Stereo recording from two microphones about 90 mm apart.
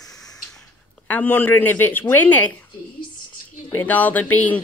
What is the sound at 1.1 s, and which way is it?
Speech, 20° left (ahead or behind).